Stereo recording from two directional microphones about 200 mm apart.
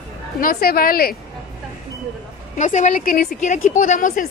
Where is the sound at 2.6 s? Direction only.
35° left (ahead or behind).